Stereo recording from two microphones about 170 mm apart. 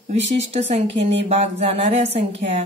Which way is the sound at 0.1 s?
40° right (ahead or behind).